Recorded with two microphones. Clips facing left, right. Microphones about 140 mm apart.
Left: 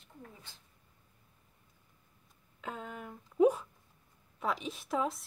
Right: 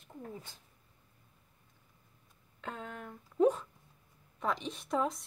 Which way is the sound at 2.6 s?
5° left (ahead or behind).